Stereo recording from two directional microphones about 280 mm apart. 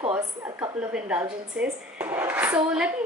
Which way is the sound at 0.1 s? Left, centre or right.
Centre.